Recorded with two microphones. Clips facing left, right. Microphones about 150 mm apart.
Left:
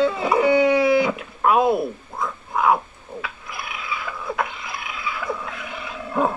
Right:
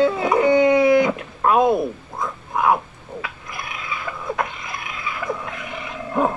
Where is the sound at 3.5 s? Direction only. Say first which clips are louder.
Left 1 dB; 20° right (ahead or behind).